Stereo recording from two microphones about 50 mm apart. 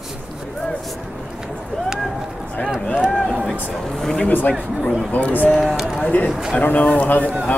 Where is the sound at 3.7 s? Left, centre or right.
Centre.